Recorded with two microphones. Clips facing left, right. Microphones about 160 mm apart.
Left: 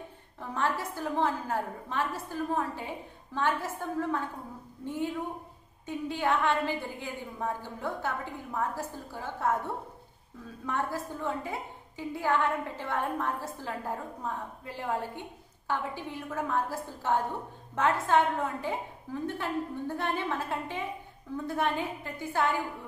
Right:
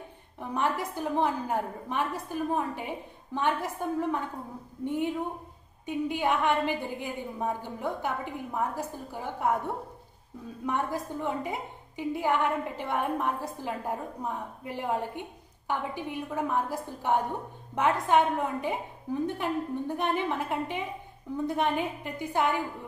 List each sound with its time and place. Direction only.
0.4 s a woman's voice: 15° right (ahead or behind)
10.6 s a woman's voice: 15° right (ahead or behind)